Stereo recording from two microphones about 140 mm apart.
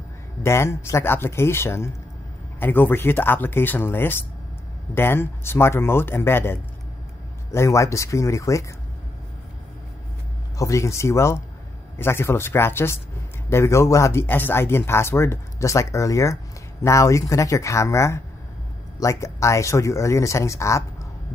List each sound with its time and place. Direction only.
0.4 s speech: 20° left (ahead or behind)
10.6 s speech: 20° left (ahead or behind)